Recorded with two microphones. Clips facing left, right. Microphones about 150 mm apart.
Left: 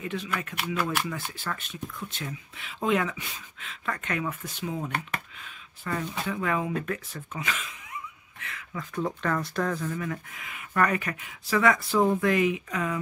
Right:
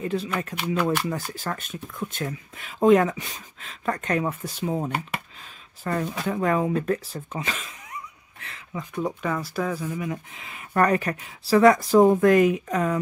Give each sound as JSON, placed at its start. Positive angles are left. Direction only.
{"t": 0.0, "sound": "speech", "side_deg": -35}
{"t": 8.7, "sound": "speech", "side_deg": -15}
{"t": 10.4, "sound": "speech", "side_deg": -35}